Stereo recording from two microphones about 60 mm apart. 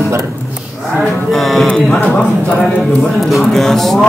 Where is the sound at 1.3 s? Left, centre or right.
Centre.